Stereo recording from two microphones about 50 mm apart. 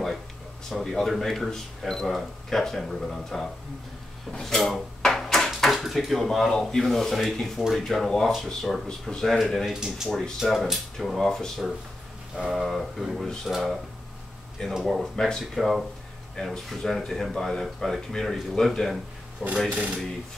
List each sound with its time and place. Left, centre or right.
0.7 s speech: centre
4.3 s drawer open or close: centre
5.5 s speech: centre
9.7 s speech: centre
12.4 s speech: centre
15.0 s speech: centre
15.5 s speech: centre
19.4 s speech: right